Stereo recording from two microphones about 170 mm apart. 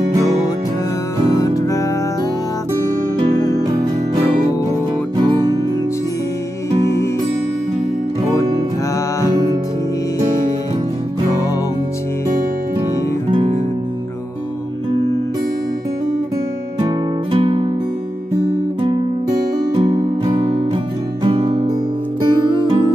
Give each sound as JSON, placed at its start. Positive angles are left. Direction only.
{"t": 3.3, "sound": "music", "side_deg": 20}
{"t": 3.6, "sound": "music", "side_deg": -25}
{"t": 5.1, "sound": "music", "side_deg": -20}
{"t": 9.3, "sound": "music", "side_deg": -20}
{"t": 13.3, "sound": "music", "side_deg": -35}
{"t": 16.8, "sound": "music", "side_deg": -30}
{"t": 19.7, "sound": "music", "side_deg": -25}